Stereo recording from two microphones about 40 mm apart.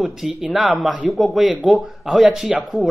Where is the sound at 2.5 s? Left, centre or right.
Right.